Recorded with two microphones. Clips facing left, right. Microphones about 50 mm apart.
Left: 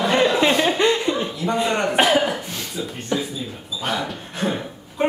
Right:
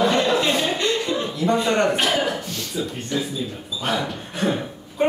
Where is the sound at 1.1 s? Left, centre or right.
Centre.